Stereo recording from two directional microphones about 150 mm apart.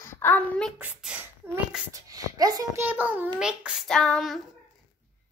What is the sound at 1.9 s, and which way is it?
Speech, 25° right (ahead or behind).